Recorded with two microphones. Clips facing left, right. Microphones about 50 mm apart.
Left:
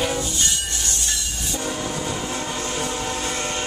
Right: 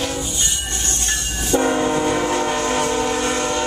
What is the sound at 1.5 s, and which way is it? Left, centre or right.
Train, right.